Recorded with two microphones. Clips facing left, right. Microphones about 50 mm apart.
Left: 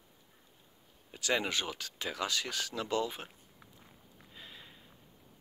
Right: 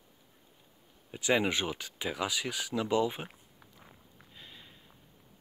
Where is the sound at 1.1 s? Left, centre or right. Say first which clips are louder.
Right 4 dB; centre.